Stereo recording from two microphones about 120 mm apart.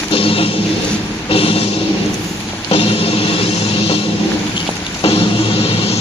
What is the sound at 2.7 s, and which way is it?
Music, 55° left (ahead or behind).